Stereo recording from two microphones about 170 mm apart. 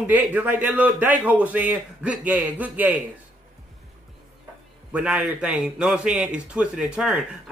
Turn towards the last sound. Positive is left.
turn(degrees=-5)  # may be behind; listen again after turning